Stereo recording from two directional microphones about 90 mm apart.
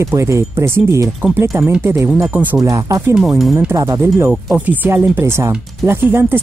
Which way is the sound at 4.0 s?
25° right (ahead or behind).